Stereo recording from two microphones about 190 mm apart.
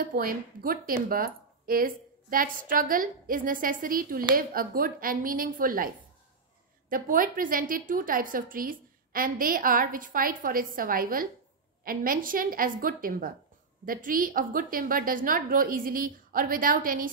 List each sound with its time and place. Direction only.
0.0 s a woman's voice: 50° right (ahead or behind)
6.9 s a woman's voice: 45° right (ahead or behind)